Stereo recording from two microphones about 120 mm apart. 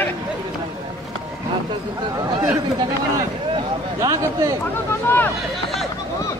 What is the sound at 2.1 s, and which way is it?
A man's voice, 30° right (ahead or behind).